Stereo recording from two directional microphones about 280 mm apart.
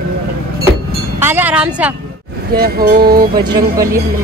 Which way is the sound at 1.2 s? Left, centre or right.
Centre.